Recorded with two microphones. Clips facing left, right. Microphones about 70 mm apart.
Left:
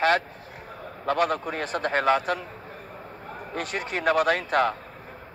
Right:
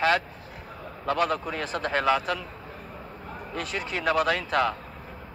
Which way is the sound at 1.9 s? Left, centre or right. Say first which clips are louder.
Left 1 dB; left.